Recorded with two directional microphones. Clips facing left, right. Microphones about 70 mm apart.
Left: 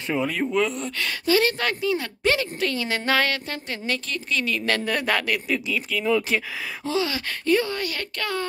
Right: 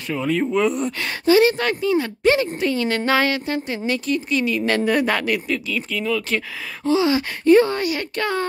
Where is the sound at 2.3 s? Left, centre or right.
Centre.